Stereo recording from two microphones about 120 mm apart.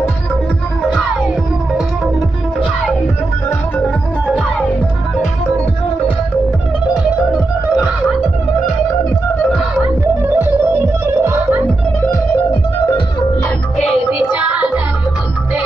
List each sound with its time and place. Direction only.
3.8 s music: 5° left (ahead or behind)
10.2 s music: 20° right (ahead or behind)